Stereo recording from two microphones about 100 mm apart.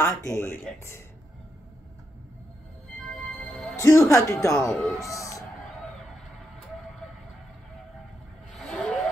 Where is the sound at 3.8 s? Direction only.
30° left (ahead or behind).